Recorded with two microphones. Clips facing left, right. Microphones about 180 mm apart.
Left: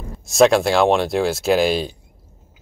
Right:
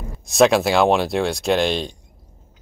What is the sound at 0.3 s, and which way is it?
Speech, centre (ahead or behind).